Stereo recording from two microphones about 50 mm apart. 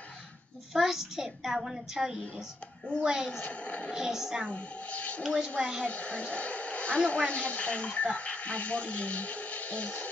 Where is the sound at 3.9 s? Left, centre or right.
Centre.